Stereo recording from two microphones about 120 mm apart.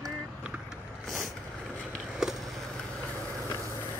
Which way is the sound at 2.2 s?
5° right (ahead or behind).